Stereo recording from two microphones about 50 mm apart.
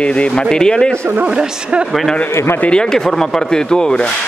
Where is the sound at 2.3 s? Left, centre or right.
Left.